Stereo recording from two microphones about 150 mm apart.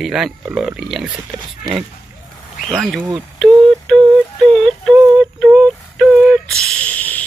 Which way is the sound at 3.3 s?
5° left (ahead or behind).